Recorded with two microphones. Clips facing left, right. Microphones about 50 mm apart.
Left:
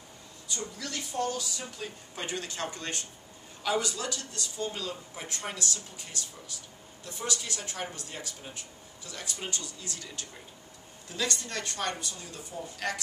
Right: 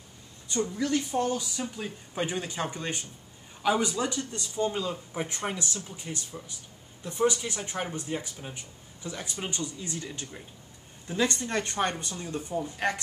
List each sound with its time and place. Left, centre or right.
0.5 s speech: right